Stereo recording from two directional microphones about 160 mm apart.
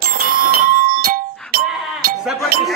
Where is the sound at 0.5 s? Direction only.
65° right (ahead or behind).